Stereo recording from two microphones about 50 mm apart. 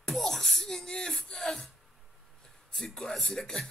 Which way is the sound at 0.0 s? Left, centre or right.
Centre.